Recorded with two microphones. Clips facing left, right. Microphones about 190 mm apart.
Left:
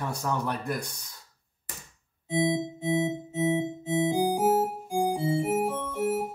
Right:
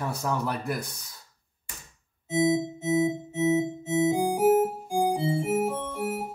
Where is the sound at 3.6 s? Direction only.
30° left (ahead or behind).